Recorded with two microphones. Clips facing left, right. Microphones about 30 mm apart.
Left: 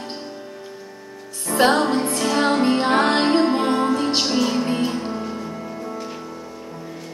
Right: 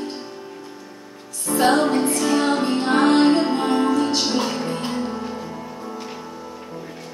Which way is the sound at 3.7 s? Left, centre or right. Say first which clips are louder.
Right 1 dB; centre.